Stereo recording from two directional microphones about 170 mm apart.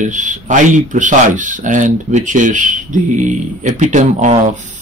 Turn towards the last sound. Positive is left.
turn(degrees=-45)  # may be behind; listen again after turning